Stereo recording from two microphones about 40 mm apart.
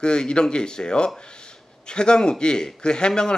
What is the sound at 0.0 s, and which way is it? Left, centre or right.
A man's voice, left.